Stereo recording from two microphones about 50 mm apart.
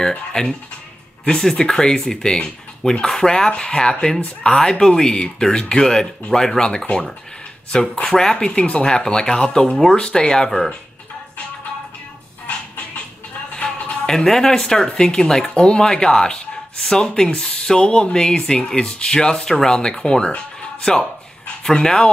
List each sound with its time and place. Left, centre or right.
0.0 s speech: centre
8.1 s speech: centre
12.4 s music: left
14.0 s speech: centre